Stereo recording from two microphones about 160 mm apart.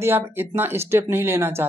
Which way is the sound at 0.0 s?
15° right (ahead or behind).